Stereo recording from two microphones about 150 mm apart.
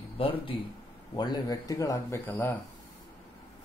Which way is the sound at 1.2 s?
25° left (ahead or behind).